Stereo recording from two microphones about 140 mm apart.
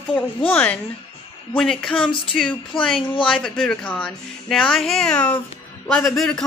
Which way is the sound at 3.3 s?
5° left (ahead or behind).